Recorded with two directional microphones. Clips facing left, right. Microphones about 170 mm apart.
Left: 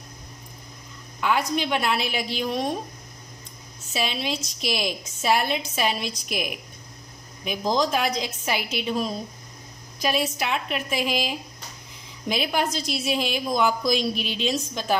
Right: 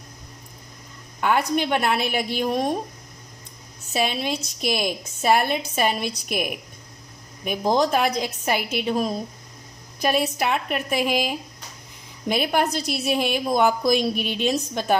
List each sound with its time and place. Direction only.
1.2 s a woman's voice: 50° right (ahead or behind)
3.9 s a woman's voice: 50° right (ahead or behind)